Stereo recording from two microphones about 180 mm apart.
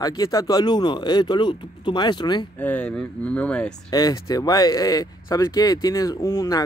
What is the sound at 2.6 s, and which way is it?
Speech, 10° left (ahead or behind).